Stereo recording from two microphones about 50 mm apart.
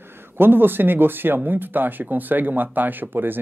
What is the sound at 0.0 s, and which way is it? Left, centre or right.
Speech, right.